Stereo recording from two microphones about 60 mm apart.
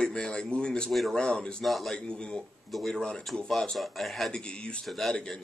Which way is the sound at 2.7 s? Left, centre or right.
Centre.